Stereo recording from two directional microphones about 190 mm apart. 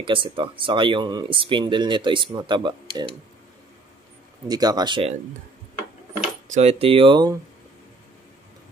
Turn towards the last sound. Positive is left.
turn(degrees=-25)  # may be behind; listen again after turning